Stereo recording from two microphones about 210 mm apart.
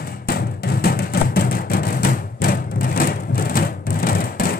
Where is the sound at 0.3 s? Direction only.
45° left (ahead or behind).